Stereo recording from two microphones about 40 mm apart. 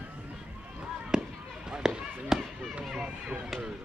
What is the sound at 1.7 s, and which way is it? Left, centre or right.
Speech, centre.